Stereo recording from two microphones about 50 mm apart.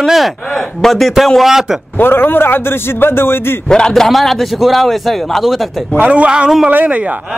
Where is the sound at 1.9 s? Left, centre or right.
Left.